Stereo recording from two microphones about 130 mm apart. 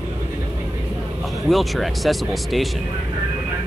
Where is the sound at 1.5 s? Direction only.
Centre (ahead or behind).